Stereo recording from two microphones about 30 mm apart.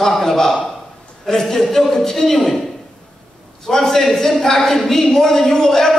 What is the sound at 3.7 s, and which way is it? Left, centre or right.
Speech, centre.